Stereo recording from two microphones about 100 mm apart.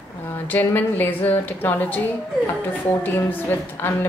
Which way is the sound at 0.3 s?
20° left (ahead or behind).